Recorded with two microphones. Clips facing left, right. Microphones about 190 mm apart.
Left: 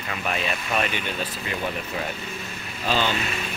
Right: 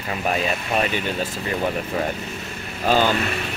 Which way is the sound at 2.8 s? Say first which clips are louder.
Right 6 dB; 45° right (ahead or behind).